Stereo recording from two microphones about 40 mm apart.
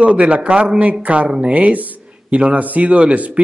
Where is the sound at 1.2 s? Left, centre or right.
Centre.